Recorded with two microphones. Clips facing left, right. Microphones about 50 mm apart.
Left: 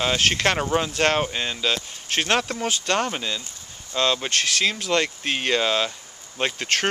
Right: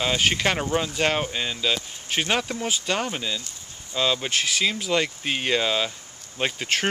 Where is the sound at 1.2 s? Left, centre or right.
Centre.